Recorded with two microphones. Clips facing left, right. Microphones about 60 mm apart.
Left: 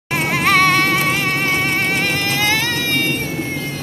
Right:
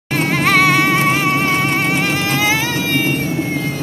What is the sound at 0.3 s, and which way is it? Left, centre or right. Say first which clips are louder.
Music: right 1 dB; centre.